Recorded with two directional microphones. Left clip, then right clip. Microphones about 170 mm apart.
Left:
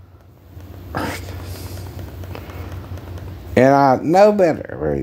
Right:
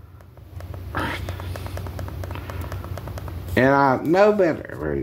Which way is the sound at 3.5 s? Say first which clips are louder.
Left 5 dB; 75° left (ahead or behind).